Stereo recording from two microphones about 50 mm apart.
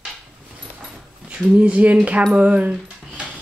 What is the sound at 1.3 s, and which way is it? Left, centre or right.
Speech, right.